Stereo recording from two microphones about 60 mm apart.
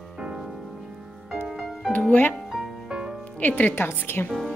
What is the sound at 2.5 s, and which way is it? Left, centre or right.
Music, centre.